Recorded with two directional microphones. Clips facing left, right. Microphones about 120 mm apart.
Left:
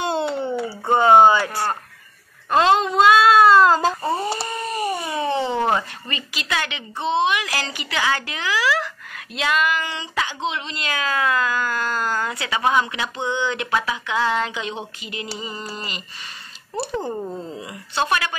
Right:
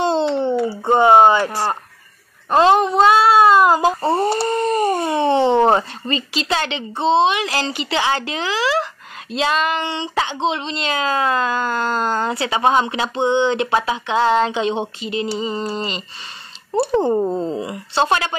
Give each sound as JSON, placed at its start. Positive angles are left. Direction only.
{"t": 0.4, "sound": "a sound", "side_deg": -25}
{"t": 1.3, "sound": "speech", "side_deg": -25}
{"t": 4.7, "sound": "speech", "side_deg": -40}